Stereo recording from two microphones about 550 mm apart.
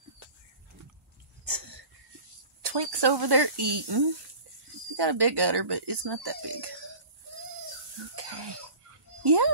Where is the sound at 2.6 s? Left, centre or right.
Right.